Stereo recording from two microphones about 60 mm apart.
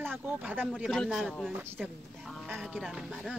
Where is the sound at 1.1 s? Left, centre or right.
Centre.